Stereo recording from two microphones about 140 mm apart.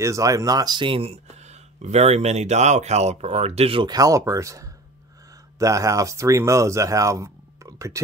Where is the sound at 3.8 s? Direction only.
25° right (ahead or behind).